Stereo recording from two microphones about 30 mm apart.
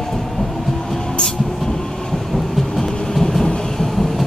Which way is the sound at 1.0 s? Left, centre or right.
Left.